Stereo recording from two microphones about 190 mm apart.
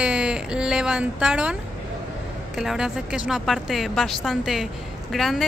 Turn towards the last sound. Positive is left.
turn(degrees=0)  # may be behind; listen again after turning